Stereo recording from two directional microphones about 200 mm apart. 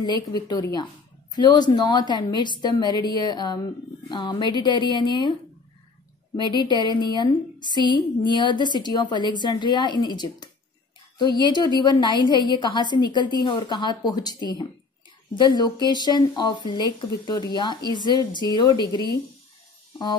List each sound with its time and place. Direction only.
0.0 s speech: 20° left (ahead or behind)
6.5 s speech: 20° left (ahead or behind)